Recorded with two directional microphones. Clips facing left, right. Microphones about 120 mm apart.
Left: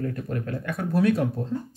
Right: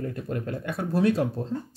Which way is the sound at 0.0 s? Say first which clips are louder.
Left 1 dB; 25° right (ahead or behind).